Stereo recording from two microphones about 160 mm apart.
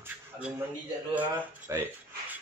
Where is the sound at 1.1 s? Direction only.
10° right (ahead or behind).